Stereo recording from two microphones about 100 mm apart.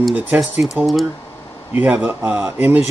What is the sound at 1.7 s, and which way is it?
Speech, 15° right (ahead or behind).